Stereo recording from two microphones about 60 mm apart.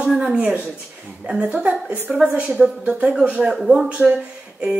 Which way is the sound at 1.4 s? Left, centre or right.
Right.